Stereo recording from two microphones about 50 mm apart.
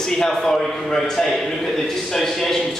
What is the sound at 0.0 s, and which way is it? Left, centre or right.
A man's voice, centre.